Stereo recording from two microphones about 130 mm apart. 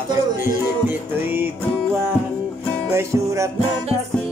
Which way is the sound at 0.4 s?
15° right (ahead or behind).